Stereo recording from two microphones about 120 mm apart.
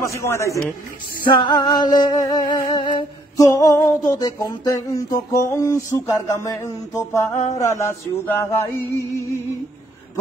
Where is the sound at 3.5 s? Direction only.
25° left (ahead or behind).